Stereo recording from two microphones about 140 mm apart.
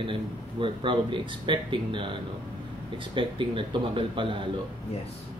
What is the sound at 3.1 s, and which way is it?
Speech, 35° right (ahead or behind).